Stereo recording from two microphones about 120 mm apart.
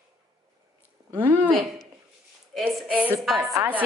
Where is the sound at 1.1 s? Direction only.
15° right (ahead or behind).